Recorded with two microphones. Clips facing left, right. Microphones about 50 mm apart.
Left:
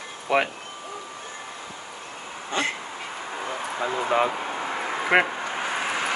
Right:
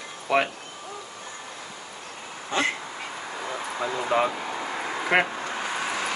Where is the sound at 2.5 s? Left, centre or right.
Centre.